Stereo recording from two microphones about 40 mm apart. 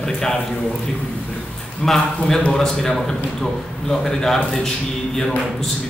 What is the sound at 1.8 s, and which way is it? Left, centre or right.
A man's voice, centre.